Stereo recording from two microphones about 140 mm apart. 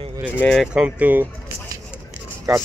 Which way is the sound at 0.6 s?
10° right (ahead or behind).